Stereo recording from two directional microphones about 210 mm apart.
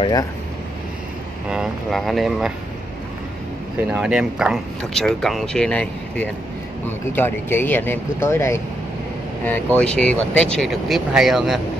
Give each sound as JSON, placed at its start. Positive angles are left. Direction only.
{"t": 0.0, "sound": "speech", "side_deg": 20}
{"t": 1.5, "sound": "speech", "side_deg": 0}
{"t": 3.9, "sound": "speech", "side_deg": -5}